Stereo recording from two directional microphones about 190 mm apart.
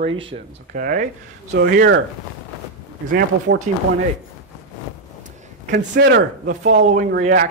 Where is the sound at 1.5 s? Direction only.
65° right (ahead or behind).